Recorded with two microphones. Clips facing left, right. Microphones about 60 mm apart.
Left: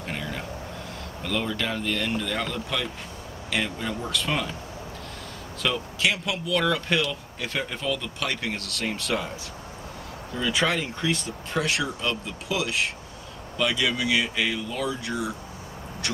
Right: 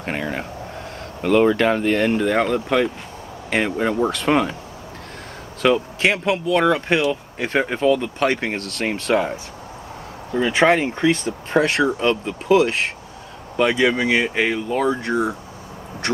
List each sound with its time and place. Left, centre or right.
0.0 s air conditioning: right
1.2 s speech: right
5.6 s speech: right